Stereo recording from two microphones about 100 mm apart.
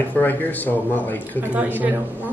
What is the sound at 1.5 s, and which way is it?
Speech, 15° right (ahead or behind).